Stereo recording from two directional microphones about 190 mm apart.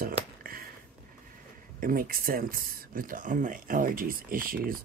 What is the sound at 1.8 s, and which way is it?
Speech, 50° right (ahead or behind).